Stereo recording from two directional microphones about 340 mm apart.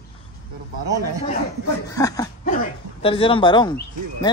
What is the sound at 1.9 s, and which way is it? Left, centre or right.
A man's voice, centre.